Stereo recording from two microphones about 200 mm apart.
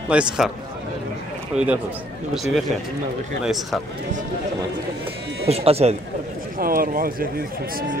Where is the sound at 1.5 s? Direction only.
5° right (ahead or behind).